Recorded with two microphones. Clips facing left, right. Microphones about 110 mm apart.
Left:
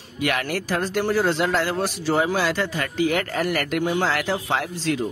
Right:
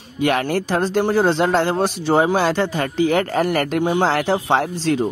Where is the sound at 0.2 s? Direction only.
30° right (ahead or behind).